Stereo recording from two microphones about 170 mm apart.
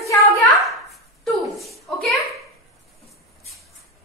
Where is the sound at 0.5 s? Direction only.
Centre (ahead or behind).